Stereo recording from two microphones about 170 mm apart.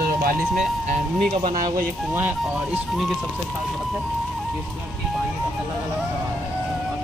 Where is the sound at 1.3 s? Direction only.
30° right (ahead or behind).